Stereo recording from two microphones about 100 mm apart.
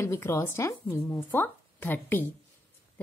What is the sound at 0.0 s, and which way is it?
Speech, 30° left (ahead or behind).